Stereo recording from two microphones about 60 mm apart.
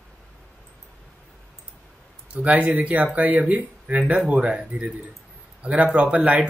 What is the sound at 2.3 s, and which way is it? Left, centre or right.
A man's voice, right.